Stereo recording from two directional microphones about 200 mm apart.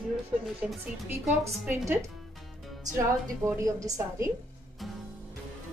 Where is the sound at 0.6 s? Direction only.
5° right (ahead or behind).